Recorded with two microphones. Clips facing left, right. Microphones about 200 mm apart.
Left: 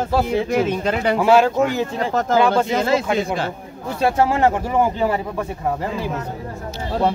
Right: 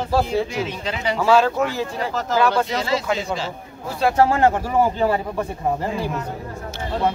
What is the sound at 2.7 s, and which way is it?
Speech, 50° left (ahead or behind).